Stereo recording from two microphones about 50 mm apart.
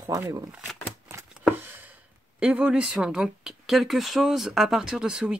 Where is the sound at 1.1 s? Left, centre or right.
Right.